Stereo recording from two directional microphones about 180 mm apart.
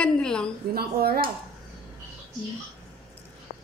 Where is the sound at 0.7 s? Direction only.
60° right (ahead or behind).